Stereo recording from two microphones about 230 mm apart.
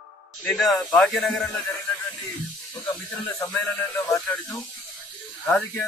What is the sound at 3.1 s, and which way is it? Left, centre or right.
Speech, centre.